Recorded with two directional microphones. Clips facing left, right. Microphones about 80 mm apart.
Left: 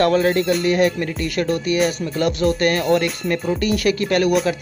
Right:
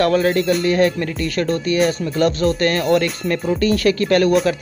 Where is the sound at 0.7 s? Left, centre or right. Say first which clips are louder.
Right 1 dB; centre.